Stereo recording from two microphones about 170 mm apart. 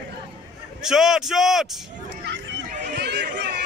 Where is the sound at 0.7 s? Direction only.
5° right (ahead or behind).